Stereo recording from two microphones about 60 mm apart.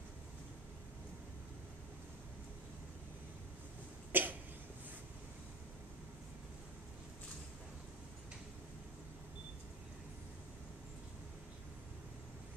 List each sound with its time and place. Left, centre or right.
4.1 s cough: right